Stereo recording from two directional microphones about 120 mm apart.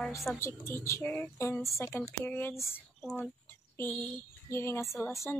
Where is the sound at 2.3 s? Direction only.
20° left (ahead or behind).